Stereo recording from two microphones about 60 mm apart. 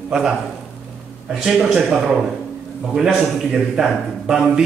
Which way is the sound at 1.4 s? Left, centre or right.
Centre.